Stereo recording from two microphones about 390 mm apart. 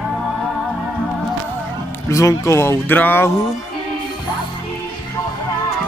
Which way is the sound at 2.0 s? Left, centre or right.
Centre.